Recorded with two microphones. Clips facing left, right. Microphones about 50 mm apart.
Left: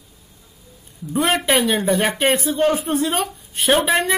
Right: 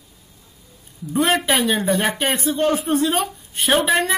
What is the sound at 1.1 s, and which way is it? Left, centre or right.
Speech, centre.